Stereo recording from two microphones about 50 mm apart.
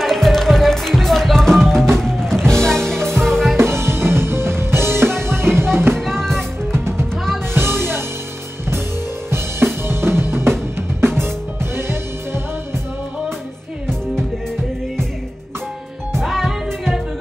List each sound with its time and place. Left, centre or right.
0.0 s music: centre
3.5 s music: right
5.9 s music: centre
6.7 s music: right
9.8 s drum kit: right
16.1 s music: centre